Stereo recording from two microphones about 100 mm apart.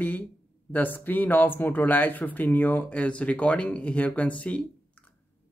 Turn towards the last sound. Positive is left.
turn(degrees=15)  # may be behind; listen again after turning